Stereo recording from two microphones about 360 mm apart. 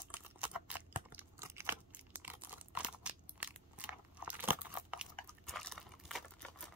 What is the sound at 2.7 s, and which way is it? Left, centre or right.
Crunch, centre.